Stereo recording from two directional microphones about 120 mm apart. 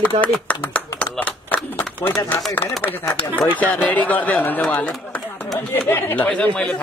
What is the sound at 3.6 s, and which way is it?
Speech, 15° left (ahead or behind).